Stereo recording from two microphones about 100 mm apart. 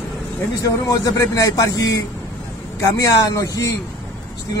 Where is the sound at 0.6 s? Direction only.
40° left (ahead or behind).